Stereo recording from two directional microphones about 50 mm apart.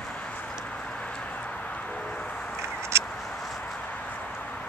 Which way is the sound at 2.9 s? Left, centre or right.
Right.